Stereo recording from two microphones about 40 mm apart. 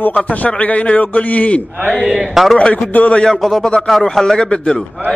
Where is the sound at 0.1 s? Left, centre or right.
Left.